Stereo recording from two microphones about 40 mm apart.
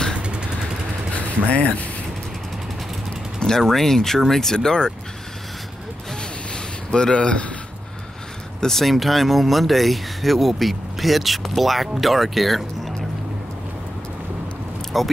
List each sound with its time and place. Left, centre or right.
0.2 s vehicle: right
1.1 s speech: left
3.3 s speech: centre
6.5 s a sound: left
8.5 s speech: centre
14.9 s speech: centre